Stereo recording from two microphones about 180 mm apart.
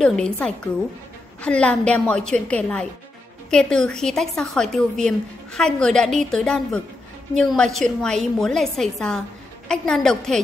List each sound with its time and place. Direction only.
0.0 s a woman's voice: 5° left (ahead or behind)